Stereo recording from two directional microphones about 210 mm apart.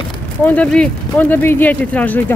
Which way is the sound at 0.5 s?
5° left (ahead or behind).